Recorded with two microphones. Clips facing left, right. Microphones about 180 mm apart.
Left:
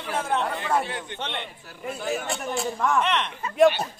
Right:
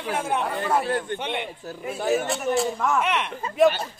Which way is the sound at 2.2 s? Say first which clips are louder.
Right 5 dB; centre (ahead or behind).